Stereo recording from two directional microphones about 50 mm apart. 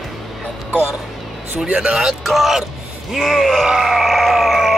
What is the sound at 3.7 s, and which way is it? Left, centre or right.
Grunt, centre.